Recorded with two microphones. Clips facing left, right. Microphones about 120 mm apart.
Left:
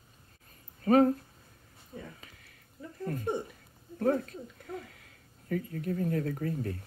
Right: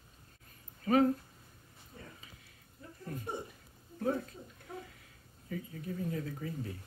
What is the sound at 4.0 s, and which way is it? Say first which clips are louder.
Speech: left 6 dB; 55° left (ahead or behind).